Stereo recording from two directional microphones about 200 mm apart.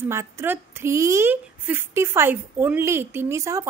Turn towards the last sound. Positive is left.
turn(degrees=-15)  # may be behind; listen again after turning